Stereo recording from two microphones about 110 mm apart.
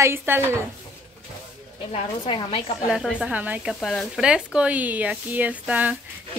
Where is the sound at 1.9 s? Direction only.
55° left (ahead or behind).